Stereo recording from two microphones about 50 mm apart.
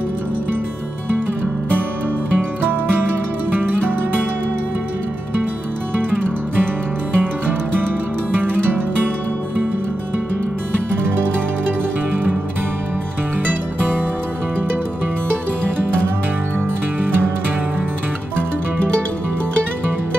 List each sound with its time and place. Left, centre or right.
2.3 s music: right
7.2 s music: right